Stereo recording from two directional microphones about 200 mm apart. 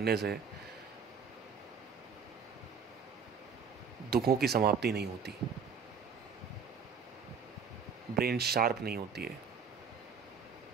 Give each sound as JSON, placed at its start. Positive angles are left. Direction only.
{"t": 0.0, "sound": "speech", "side_deg": -55}
{"t": 4.1, "sound": "speech", "side_deg": -50}
{"t": 8.2, "sound": "speech", "side_deg": -50}